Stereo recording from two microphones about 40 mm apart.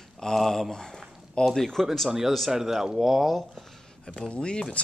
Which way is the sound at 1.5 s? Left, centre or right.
Centre.